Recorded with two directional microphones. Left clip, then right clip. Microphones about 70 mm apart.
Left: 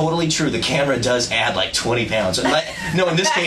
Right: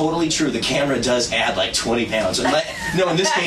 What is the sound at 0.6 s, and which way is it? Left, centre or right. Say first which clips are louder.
Speech: left 1 dB; left.